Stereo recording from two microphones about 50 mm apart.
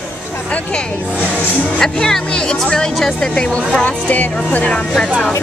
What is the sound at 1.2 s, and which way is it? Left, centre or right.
Speech, left.